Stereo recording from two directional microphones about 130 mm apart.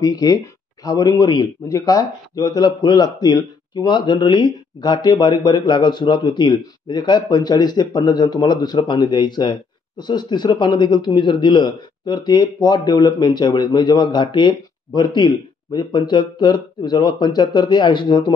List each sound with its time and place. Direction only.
0.0 s speech: 30° left (ahead or behind)